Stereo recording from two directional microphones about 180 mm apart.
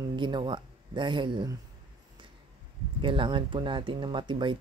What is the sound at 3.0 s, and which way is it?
Speech, 30° right (ahead or behind).